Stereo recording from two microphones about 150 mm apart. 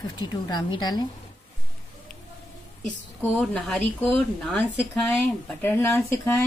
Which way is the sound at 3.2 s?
10° left (ahead or behind).